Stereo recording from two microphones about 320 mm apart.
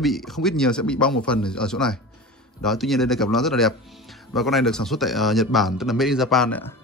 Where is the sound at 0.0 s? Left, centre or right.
Centre.